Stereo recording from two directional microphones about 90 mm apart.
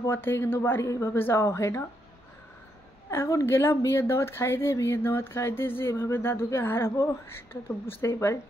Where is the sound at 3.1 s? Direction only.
30° left (ahead or behind).